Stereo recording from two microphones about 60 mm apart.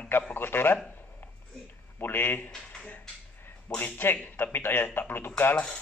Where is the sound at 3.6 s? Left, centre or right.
Left.